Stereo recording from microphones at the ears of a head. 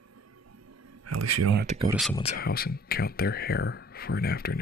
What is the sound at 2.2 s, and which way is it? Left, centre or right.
Speech, left.